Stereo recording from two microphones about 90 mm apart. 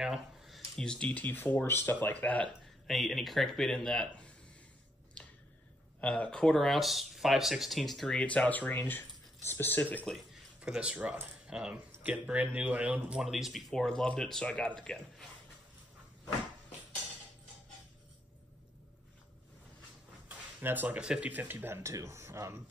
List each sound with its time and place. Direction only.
0.0 s a sound: 5° right (ahead or behind)
0.7 s speech: 10° left (ahead or behind)
2.9 s speech: centre (ahead or behind)
5.9 s speech: 15° left (ahead or behind)
10.6 s speech: 10° right (ahead or behind); by 15.2 s 5° left (ahead or behind)
20.2 s speech: 20° right (ahead or behind)